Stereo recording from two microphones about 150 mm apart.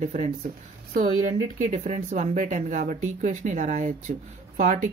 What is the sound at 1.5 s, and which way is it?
Speech, 50° right (ahead or behind).